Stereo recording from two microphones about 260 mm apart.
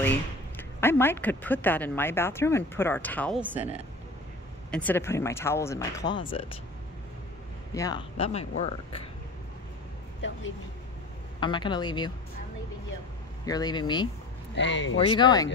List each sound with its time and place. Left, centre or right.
0.0 s speech: centre
4.6 s speech: centre
7.7 s speech: centre
10.2 s speech: left
11.3 s speech: centre
13.5 s speech: centre
14.5 s speech: left
15.0 s speech: centre